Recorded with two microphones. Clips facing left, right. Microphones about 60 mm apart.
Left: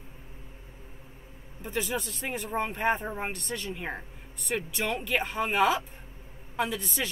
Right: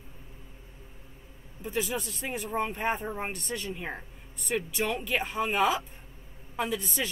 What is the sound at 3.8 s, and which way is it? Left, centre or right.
Speech, centre.